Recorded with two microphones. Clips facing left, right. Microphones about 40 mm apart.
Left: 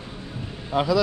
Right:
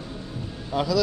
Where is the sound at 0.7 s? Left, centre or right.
Left.